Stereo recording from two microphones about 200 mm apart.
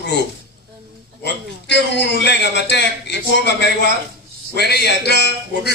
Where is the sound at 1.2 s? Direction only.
60° left (ahead or behind).